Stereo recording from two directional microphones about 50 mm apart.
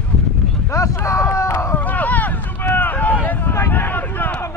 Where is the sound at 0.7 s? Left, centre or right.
Left.